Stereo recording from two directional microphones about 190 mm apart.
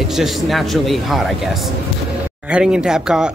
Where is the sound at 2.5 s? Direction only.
5° right (ahead or behind).